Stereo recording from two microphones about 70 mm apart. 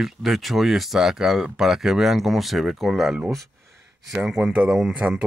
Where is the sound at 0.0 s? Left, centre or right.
Centre.